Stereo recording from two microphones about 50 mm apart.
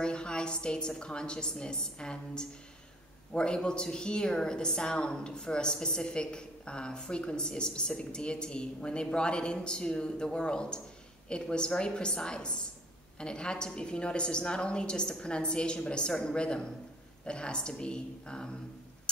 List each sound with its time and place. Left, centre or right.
0.0 s a woman's voice: centre